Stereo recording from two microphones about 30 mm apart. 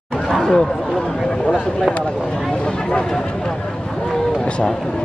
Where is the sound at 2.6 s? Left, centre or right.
Left.